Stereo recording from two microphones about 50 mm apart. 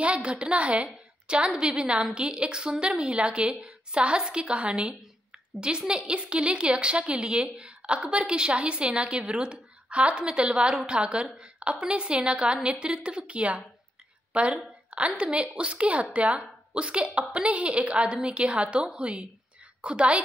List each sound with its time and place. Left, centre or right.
0.0 s a woman's voice: right
7.5 s a sound: right
8.3 s a woman's voice: right